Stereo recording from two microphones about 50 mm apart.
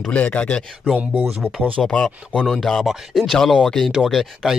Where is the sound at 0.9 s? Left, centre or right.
Right.